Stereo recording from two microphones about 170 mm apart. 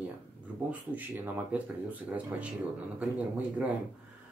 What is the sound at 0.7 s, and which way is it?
Speech, 10° right (ahead or behind).